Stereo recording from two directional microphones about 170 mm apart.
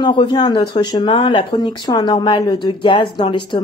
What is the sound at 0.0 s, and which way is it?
Speech, 30° left (ahead or behind).